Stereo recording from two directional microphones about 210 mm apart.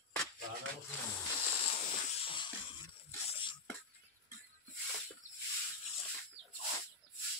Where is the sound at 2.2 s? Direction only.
25° left (ahead or behind).